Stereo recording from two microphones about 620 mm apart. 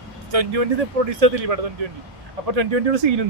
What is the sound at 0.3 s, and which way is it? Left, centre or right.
Speech, right.